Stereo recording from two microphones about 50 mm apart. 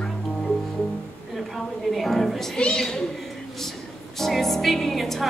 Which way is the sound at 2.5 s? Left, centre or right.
Centre.